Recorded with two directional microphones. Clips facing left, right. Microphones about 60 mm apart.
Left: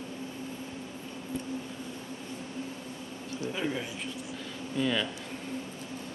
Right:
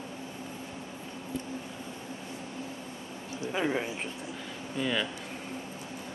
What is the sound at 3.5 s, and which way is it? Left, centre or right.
Speech, right.